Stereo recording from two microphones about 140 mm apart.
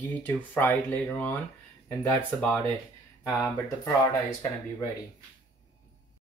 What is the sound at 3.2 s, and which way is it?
Speech, 20° left (ahead or behind).